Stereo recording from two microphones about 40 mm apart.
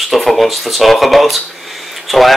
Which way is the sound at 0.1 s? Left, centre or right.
Centre.